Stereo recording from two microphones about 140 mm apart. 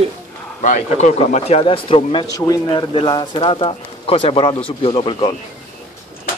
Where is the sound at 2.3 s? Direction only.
25° left (ahead or behind).